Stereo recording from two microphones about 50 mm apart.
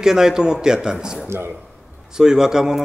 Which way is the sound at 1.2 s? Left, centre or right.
Right.